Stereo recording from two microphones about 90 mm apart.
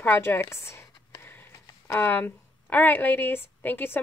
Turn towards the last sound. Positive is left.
turn(degrees=25)  # may be behind; listen again after turning